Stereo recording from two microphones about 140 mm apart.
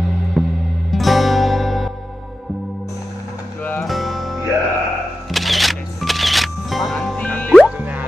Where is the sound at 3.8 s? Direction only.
Centre (ahead or behind).